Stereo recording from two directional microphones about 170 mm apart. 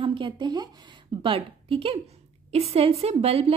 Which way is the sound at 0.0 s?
30° right (ahead or behind).